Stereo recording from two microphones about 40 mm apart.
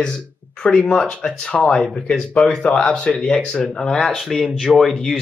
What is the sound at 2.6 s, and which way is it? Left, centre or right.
Speech, left.